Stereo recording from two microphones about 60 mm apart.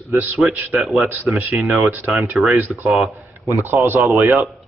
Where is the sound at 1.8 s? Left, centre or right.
Right.